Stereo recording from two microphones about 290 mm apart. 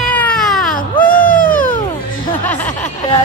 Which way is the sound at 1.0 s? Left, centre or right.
Centre.